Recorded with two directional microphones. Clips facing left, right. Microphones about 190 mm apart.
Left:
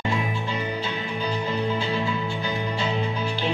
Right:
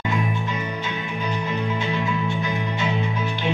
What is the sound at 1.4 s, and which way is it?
Music, 30° left (ahead or behind).